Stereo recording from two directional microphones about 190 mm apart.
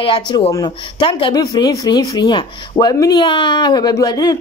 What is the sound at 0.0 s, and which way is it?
Speech, 25° left (ahead or behind).